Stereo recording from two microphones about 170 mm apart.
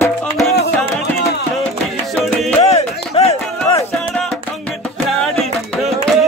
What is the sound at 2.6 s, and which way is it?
Music, 35° left (ahead or behind).